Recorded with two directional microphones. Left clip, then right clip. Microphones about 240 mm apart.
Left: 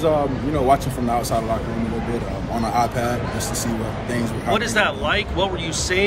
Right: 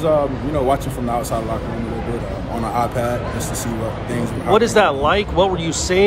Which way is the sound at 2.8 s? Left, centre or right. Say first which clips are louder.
Right 1 dB; centre.